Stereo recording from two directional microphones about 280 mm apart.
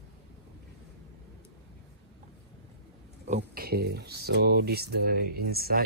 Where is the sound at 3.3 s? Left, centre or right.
Right.